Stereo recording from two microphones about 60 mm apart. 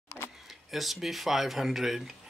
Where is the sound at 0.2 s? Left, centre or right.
Left.